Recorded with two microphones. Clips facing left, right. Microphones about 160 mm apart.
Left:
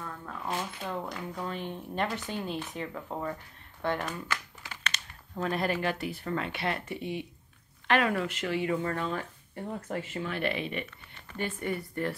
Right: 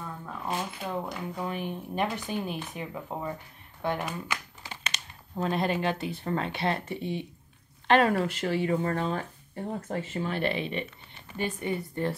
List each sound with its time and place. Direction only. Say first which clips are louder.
0.0 s speech: right 1 dB; 10° right (ahead or behind)
4.8 s typing: left 1 dB; 15° right (ahead or behind)
5.4 s speech: right 2 dB; 25° right (ahead or behind)
11.3 s speech: right 2 dB; 20° right (ahead or behind)